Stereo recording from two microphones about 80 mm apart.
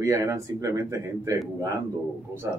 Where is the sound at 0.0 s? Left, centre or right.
Right.